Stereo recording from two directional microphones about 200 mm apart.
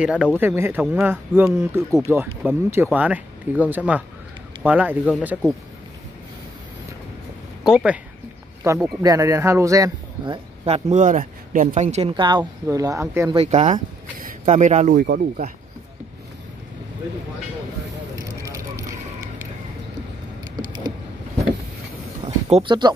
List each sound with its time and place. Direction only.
0.0 s speech: 5° right (ahead or behind)
7.6 s speech: 5° right (ahead or behind)
8.6 s speech: 15° right (ahead or behind)
13.3 s speech: 30° right (ahead or behind); by 15.5 s 45° right (ahead or behind)
18.2 s vehicle: 15° right (ahead or behind)
22.2 s a sound: 25° right (ahead or behind)